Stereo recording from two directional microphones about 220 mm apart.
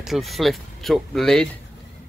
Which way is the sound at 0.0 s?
Centre (ahead or behind).